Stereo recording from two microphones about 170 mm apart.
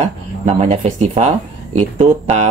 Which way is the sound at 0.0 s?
40° right (ahead or behind).